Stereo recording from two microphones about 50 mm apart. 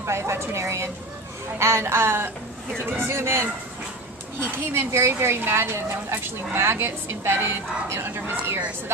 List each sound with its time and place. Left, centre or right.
0.0 s speech: right